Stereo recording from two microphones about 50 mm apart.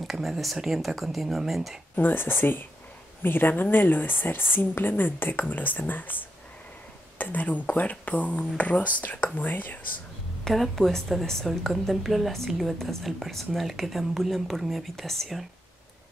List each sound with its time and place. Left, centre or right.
0.0 s speech: centre
2.0 s a woman's voice: left
10.4 s speech: centre